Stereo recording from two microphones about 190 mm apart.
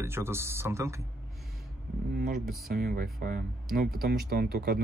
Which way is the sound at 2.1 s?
55° right (ahead or behind).